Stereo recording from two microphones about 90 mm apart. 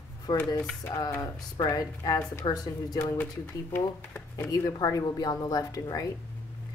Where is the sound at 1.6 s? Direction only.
40° left (ahead or behind).